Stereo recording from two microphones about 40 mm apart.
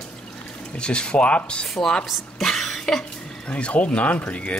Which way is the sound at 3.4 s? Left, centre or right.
Left.